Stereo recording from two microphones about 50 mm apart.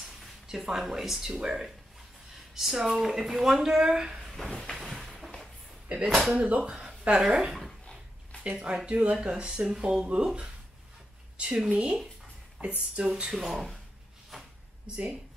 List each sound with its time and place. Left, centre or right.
0.0 s speech: centre
4.5 s a sound: centre
6.0 s speech: centre
6.3 s speech: right
6.7 s a woman's voice: centre